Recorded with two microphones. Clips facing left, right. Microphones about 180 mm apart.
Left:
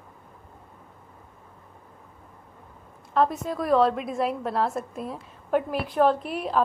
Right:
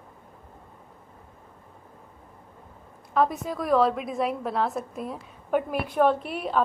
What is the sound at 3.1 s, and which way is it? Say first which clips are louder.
A woman's voice: left 1 dB; centre (ahead or behind).